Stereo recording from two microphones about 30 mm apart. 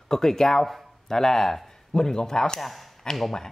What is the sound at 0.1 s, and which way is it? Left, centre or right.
Speech, centre.